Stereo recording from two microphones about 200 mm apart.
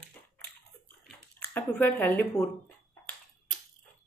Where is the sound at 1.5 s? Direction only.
5° left (ahead or behind).